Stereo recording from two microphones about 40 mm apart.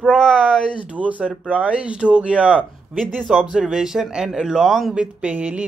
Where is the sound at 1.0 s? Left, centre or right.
Right.